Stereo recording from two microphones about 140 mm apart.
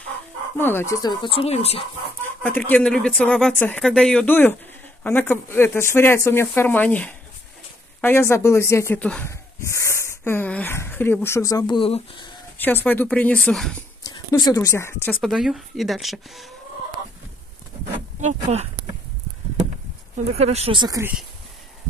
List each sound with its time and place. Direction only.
0.6 s speech: 15° left (ahead or behind)
1.0 s speech: 40° left (ahead or behind)
2.4 s speech: 10° left (ahead or behind)
9.3 s speech: 20° left (ahead or behind); by 12.4 s 35° left (ahead or behind)
12.5 s speech: 15° left (ahead or behind)
14.0 s speech: 30° left (ahead or behind)
15.1 s speech: centre (ahead or behind)
18.2 s speech: 50° right (ahead or behind)
20.2 s speech: 50° right (ahead or behind)
20.7 s speech: 30° right (ahead or behind)